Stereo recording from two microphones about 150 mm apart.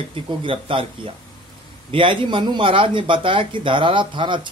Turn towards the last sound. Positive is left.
turn(degrees=-30)  # may be behind; listen again after turning